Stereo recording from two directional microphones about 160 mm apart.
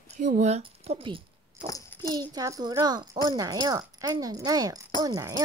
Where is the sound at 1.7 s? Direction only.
15° left (ahead or behind).